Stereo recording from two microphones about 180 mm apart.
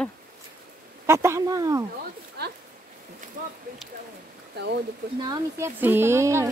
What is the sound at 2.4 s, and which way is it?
Speech, 60° right (ahead or behind).